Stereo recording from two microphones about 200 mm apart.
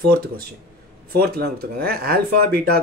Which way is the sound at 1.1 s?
50° right (ahead or behind).